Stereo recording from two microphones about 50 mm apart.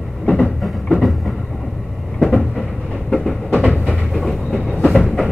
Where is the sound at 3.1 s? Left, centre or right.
Centre.